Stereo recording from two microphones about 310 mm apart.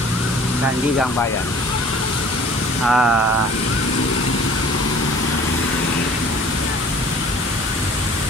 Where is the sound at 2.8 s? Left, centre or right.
Centre.